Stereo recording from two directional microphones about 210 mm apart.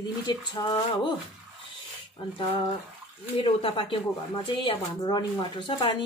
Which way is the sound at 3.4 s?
25° left (ahead or behind).